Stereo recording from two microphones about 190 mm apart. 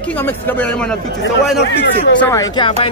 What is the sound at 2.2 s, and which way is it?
Speech, 15° left (ahead or behind).